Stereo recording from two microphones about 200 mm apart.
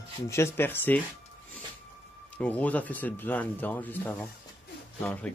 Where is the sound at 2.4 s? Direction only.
5° left (ahead or behind).